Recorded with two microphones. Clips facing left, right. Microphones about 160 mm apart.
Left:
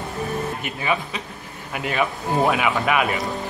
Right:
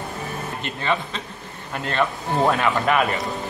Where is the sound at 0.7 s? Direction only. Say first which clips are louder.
Even; 10° left (ahead or behind).